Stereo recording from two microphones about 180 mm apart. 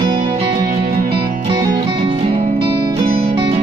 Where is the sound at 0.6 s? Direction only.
40° right (ahead or behind).